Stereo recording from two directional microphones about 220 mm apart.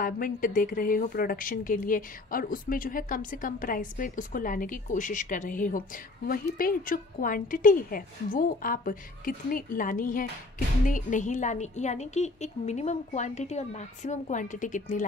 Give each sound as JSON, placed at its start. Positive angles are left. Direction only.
{"t": 0.0, "sound": "a woman's voice", "side_deg": 40}